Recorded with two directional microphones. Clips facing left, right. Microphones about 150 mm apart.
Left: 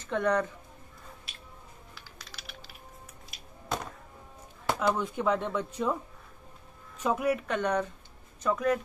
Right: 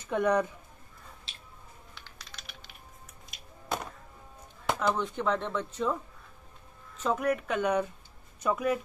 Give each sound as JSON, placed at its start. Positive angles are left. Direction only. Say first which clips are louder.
{"t": 0.0, "sound": "speech", "louder": "right 1 dB", "side_deg": -10}
{"t": 1.3, "sound": "a sound", "louder": "left 1 dB", "side_deg": -25}
{"t": 2.0, "sound": "music", "louder": "even", "side_deg": 0}
{"t": 3.3, "sound": "chop", "louder": "even", "side_deg": -5}
{"t": 4.6, "sound": "speech", "louder": "left 1 dB", "side_deg": 5}
{"t": 7.0, "sound": "speech", "louder": "left 1 dB", "side_deg": 5}